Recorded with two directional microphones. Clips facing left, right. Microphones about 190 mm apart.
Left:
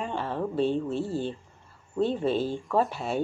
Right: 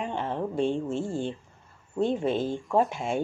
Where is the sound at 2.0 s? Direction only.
15° right (ahead or behind).